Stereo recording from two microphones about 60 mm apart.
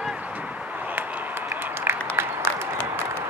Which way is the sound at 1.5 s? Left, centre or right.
Right.